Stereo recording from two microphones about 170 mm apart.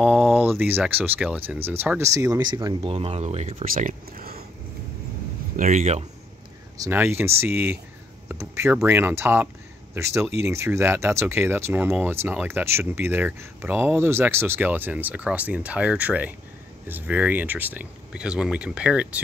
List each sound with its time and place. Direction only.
0.0 s a sound: centre (ahead or behind)
0.5 s speech: 10° right (ahead or behind)
2.9 s speech: 35° right (ahead or behind); by 4.5 s 60° right (ahead or behind)
5.6 s speech: 45° right (ahead or behind)
6.8 s speech: 15° right (ahead or behind)